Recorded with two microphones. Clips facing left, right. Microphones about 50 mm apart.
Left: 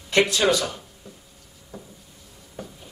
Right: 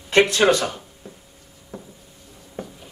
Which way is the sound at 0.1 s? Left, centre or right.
Right.